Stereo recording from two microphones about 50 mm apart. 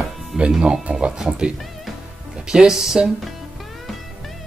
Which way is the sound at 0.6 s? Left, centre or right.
Centre.